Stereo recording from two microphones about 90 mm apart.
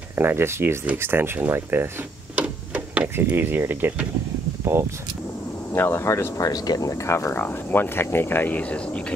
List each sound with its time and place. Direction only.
0.1 s speech: 25° right (ahead or behind)
2.3 s a sound: 15° right (ahead or behind)
5.7 s speech: 25° left (ahead or behind)
7.3 s speech: 20° left (ahead or behind)